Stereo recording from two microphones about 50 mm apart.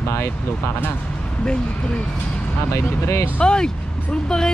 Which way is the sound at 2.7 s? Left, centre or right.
Left.